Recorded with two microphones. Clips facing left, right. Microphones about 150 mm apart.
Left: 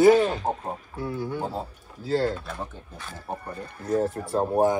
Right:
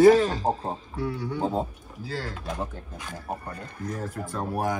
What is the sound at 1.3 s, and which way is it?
Speech, 20° right (ahead or behind).